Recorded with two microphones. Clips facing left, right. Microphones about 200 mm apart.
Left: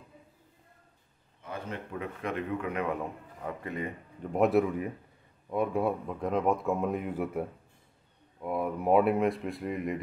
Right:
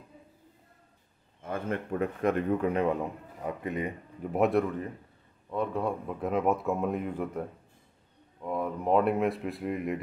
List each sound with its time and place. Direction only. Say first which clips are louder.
1.4 s speech: right 6 dB; 50° right (ahead or behind); by 3.0 s 30° right (ahead or behind)
3.4 s speech: right 3 dB; 20° right (ahead or behind)
4.2 s a man's voice: left 1 dB; 5° right (ahead or behind)
6.0 s speech: right 1 dB; 5° right (ahead or behind)